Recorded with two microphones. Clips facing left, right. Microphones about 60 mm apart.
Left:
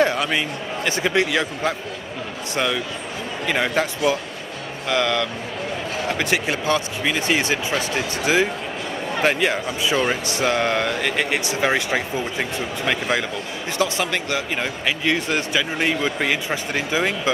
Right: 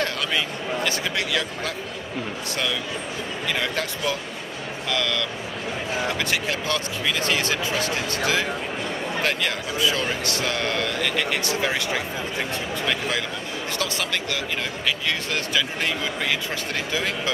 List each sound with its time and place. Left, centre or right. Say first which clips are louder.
0.0 s speech: left 5 dB; centre